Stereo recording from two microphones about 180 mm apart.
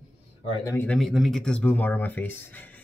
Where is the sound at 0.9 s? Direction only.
Centre (ahead or behind).